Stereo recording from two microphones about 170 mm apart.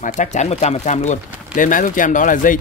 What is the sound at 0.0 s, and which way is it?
Speech, 45° left (ahead or behind).